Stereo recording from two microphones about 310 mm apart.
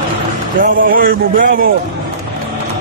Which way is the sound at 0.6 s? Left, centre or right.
Right.